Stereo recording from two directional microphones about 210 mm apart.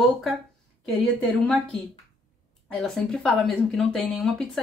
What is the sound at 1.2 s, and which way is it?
Speech, 5° left (ahead or behind).